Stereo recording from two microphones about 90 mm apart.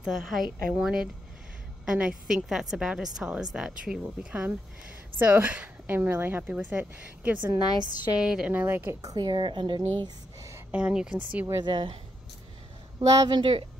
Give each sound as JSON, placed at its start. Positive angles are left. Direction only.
{"t": 0.0, "sound": "a woman's voice", "side_deg": -5}
{"t": 5.2, "sound": "a woman's voice", "side_deg": -20}
{"t": 9.0, "sound": "speech", "side_deg": -50}
{"t": 10.7, "sound": "a woman's voice", "side_deg": -10}
{"t": 11.6, "sound": "speech", "side_deg": -70}
{"t": 13.2, "sound": "speech", "side_deg": -55}